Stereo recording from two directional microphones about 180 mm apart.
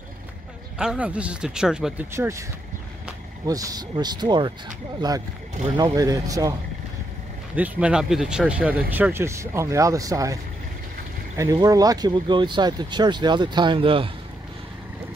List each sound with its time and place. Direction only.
0.7 s speech: 5° right (ahead or behind)
2.1 s speech: 15° right (ahead or behind)
3.4 s speech: 20° right (ahead or behind)
5.6 s speech: 30° right (ahead or behind)
7.5 s speech: 10° right (ahead or behind); by 14.1 s 30° right (ahead or behind)